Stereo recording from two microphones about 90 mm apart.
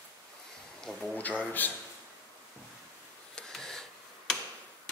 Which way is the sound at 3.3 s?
5° left (ahead or behind).